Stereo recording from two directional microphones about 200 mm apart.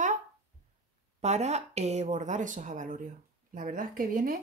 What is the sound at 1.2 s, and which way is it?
Speech, 35° right (ahead or behind).